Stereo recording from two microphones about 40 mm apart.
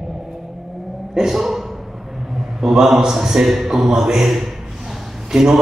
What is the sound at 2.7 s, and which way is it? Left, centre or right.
A man's voice, centre.